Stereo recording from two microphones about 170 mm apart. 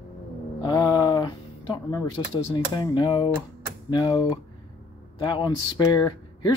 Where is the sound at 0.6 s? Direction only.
25° left (ahead or behind).